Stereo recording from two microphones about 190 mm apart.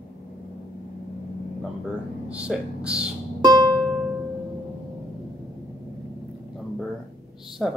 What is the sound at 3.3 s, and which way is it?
Music, 20° right (ahead or behind).